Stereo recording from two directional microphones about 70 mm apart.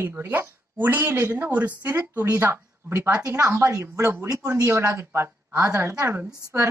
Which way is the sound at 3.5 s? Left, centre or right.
Right.